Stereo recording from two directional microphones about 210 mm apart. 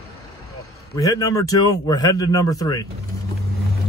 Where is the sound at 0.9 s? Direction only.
15° left (ahead or behind).